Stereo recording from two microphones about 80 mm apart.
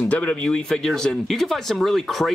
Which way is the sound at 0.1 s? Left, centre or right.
Centre.